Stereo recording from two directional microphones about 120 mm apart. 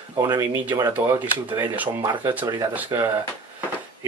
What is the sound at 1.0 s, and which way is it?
Speech, 20° right (ahead or behind).